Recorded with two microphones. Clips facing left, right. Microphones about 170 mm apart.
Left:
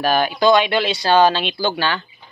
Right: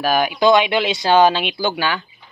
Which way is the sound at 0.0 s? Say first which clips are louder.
Even; 10° right (ahead or behind).